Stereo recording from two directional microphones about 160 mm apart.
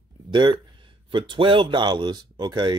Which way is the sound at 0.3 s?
30° right (ahead or behind).